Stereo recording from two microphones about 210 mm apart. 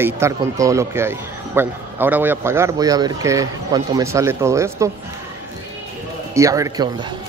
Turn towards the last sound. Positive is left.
turn(degrees=-20)  # may be behind; listen again after turning